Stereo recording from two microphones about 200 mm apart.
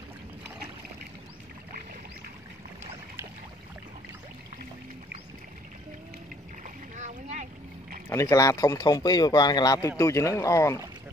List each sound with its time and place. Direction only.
7.0 s boat: 35° right (ahead or behind)
8.1 s speech: 15° left (ahead or behind)